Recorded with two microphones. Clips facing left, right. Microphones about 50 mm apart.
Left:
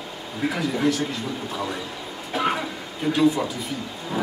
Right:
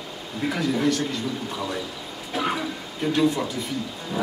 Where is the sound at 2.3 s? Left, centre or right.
Centre.